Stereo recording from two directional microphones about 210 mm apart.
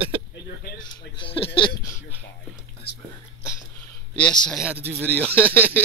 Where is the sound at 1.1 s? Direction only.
25° left (ahead or behind).